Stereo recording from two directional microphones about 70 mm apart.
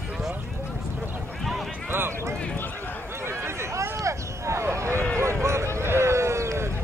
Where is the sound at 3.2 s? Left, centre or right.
Right.